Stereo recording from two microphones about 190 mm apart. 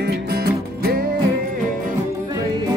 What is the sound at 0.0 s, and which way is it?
Music, 55° right (ahead or behind).